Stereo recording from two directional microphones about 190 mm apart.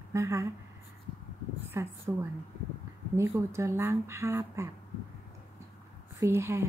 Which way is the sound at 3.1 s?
15° right (ahead or behind).